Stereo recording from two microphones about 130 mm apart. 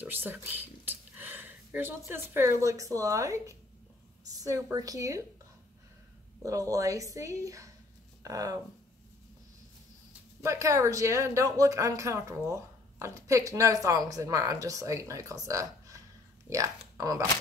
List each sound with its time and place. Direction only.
0.0 s speech: 15° right (ahead or behind)
6.4 s speech: 25° right (ahead or behind)
10.4 s speech: 25° right (ahead or behind)